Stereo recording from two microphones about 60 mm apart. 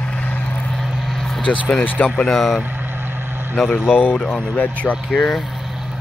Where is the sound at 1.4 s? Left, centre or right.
Centre.